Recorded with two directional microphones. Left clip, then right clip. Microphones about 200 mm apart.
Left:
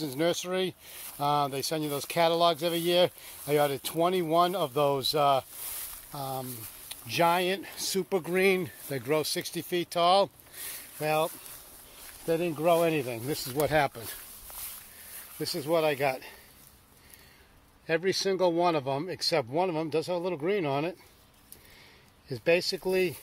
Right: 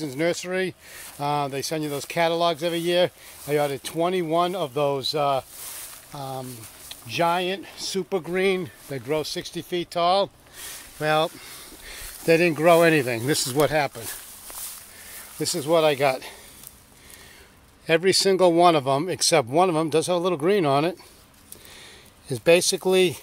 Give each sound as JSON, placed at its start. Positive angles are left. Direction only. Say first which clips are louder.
{"t": 0.0, "sound": "speech", "louder": "right 4 dB", "side_deg": 5}
{"t": 8.9, "sound": "speech", "louder": "right 2 dB", "side_deg": 25}
{"t": 11.0, "sound": "speech", "louder": "right 6 dB", "side_deg": -20}
{"t": 12.3, "sound": "speech", "louder": "right 9 dB", "side_deg": -35}
{"t": 13.7, "sound": "speech", "louder": "right 3 dB", "side_deg": 25}
{"t": 15.3, "sound": "speech", "louder": "right 7 dB", "side_deg": -20}
{"t": 17.8, "sound": "speech", "louder": "right 8 dB", "side_deg": -25}
{"t": 22.3, "sound": "speech", "louder": "right 8 dB", "side_deg": -25}